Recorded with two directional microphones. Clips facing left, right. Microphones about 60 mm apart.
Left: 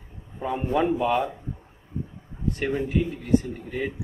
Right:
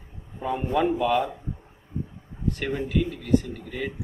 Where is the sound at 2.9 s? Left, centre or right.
Left.